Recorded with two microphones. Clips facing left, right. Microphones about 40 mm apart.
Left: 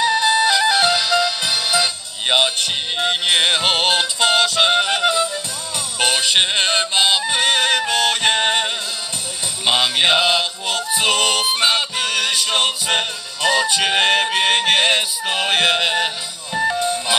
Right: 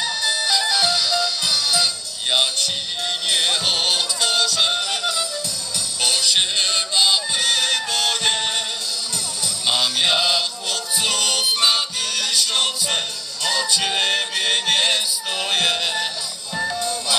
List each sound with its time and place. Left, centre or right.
0.0 s music: left
9.7 s music: left